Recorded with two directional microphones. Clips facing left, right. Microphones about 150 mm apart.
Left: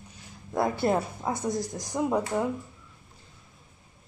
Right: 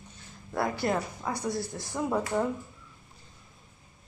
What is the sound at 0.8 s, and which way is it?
A woman's voice, 25° left (ahead or behind).